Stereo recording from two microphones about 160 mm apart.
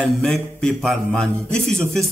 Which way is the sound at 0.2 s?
5° left (ahead or behind).